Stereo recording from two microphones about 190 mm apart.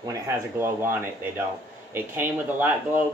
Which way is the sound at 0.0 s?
15° right (ahead or behind).